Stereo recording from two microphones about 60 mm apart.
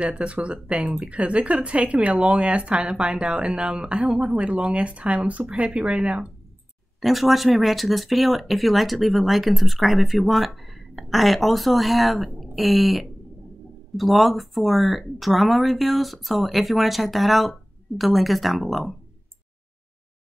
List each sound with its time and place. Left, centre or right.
0.0 s speech: centre
7.0 s speech: centre